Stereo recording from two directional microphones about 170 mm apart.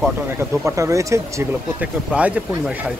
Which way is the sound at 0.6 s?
15° right (ahead or behind).